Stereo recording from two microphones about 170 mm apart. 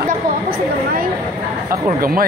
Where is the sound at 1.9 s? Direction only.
55° right (ahead or behind).